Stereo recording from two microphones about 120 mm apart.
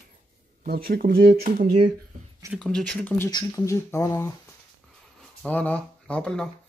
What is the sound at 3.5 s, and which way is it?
Speech, 25° left (ahead or behind).